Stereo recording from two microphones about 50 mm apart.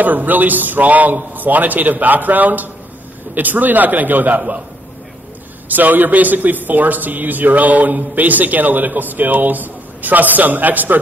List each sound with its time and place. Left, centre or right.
0.0 s a man's voice: right
5.7 s a man's voice: right